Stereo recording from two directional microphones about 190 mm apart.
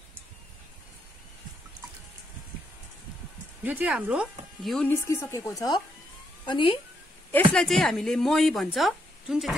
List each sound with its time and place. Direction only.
3.6 s speech: 10° right (ahead or behind)
5.0 s a woman's voice: 15° left (ahead or behind)
7.5 s a woman's voice: centre (ahead or behind)